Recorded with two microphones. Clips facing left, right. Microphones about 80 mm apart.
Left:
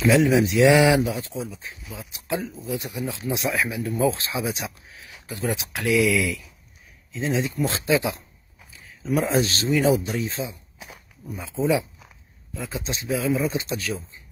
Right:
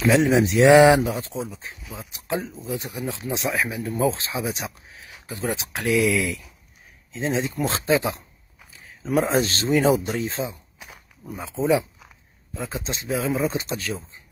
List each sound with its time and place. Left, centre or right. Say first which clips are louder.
0.0 s a man's voice: even; right